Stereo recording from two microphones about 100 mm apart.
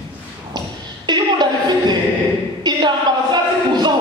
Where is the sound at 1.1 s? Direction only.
45° right (ahead or behind).